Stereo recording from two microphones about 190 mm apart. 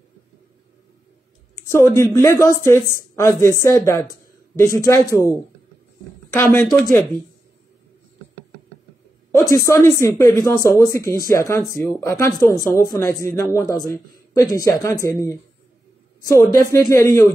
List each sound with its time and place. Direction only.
1.5 s speech: 15° left (ahead or behind)
6.3 s speech: 5° left (ahead or behind)
9.3 s speech: 15° left (ahead or behind)
16.6 s speech: 15° left (ahead or behind)